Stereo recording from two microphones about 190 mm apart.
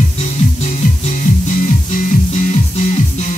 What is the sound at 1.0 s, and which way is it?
Music, 45° left (ahead or behind).